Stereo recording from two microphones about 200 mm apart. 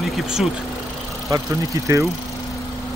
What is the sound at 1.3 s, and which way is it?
Speech, 15° right (ahead or behind).